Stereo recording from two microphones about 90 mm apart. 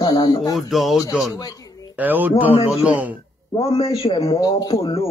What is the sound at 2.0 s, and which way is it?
Speech, 20° right (ahead or behind).